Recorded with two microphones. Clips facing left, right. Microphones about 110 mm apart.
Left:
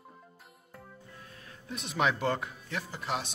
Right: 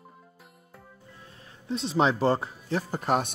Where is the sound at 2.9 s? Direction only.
45° right (ahead or behind).